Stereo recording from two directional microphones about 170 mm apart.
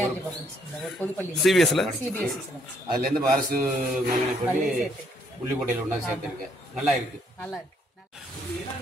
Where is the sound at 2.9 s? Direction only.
55° right (ahead or behind).